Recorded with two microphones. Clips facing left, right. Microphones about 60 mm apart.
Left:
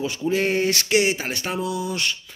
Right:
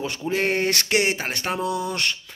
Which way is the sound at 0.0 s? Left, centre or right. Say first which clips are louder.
Left 2 dB; right.